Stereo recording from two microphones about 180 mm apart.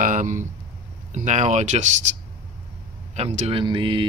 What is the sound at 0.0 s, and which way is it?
Speech, 45° right (ahead or behind).